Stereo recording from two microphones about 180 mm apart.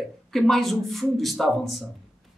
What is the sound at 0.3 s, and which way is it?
A man's voice, centre (ahead or behind).